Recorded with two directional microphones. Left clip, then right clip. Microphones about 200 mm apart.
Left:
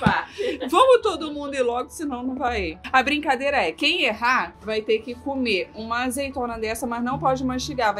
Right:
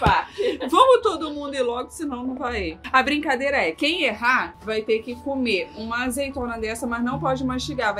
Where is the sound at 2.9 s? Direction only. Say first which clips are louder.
Even; 10° left (ahead or behind).